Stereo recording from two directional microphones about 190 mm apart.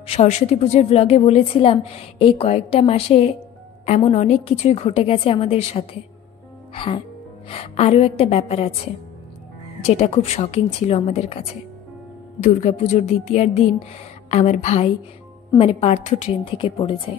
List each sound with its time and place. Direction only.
0.0 s a woman's voice: 35° left (ahead or behind)
6.7 s music: 30° left (ahead or behind)
7.4 s a woman's voice: 30° left (ahead or behind)
9.8 s a woman's voice: 35° left (ahead or behind)